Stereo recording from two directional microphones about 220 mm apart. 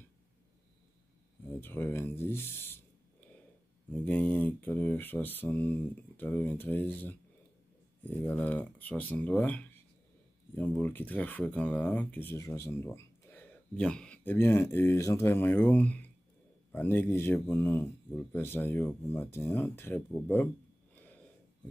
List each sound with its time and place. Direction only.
1.6 s speech: 10° left (ahead or behind)